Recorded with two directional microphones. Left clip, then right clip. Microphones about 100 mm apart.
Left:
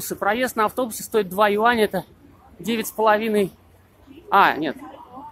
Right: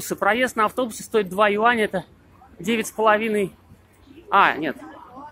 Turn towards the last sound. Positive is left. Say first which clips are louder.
# left 1 dB
turn(degrees=15)  # may be behind; listen again after turning